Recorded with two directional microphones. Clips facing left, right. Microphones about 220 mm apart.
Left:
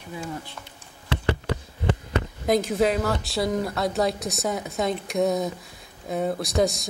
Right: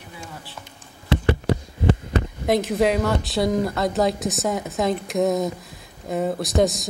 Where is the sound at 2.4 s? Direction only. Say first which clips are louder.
Right 1 dB; centre (ahead or behind).